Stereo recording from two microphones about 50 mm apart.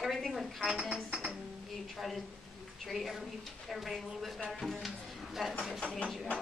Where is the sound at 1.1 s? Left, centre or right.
Centre.